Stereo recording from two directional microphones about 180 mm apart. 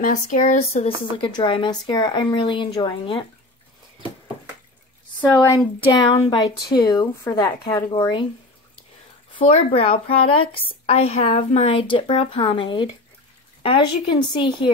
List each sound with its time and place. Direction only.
0.0 s speech: 45° left (ahead or behind); by 3.3 s 25° left (ahead or behind)
5.2 s speech: 10° left (ahead or behind)
9.4 s a woman's voice: 30° left (ahead or behind)